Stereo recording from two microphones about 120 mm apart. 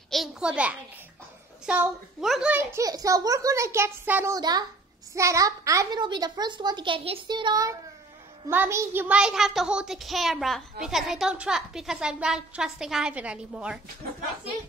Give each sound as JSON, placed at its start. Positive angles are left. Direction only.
{"t": 0.1, "sound": "a child's voice", "side_deg": 0}
{"t": 2.5, "sound": "a child's voice", "side_deg": -25}
{"t": 4.3, "sound": "a woman's voice", "side_deg": -35}
{"t": 8.5, "sound": "a child's voice", "side_deg": -20}